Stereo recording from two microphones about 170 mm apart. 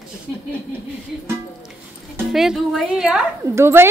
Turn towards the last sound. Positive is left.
turn(degrees=-15)  # may be behind; listen again after turning